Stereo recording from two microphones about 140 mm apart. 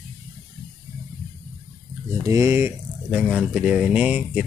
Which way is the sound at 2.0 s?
20° right (ahead or behind).